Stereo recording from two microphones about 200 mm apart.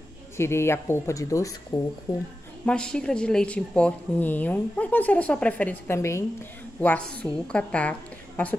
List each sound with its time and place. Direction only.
0.4 s a woman's voice: 15° left (ahead or behind)
2.6 s a woman's voice: 5° left (ahead or behind)